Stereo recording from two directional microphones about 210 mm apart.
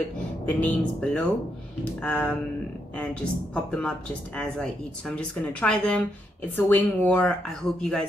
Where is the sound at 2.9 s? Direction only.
5° left (ahead or behind).